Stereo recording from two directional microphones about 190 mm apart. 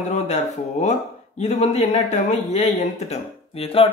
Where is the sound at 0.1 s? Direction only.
35° left (ahead or behind).